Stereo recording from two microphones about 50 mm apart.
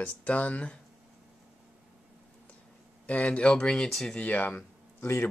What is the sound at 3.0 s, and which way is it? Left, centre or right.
Speech, left.